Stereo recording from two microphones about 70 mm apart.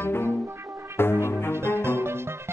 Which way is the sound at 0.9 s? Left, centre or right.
Left.